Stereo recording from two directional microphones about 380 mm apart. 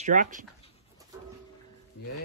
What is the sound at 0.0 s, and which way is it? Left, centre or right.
Speech, centre.